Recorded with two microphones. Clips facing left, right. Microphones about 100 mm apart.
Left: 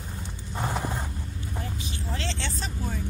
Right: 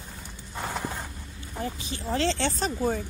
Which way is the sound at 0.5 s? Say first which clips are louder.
Left 2 dB; 15° left (ahead or behind).